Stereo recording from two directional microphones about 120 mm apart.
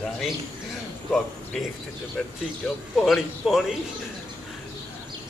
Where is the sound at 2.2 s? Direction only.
Centre (ahead or behind).